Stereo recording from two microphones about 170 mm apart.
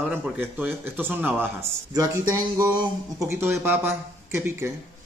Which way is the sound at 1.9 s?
20° right (ahead or behind).